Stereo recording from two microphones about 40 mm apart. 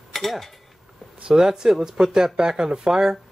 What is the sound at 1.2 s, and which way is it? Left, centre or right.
Speech, centre.